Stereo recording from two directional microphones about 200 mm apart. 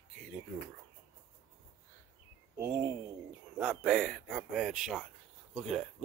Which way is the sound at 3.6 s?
5° right (ahead or behind).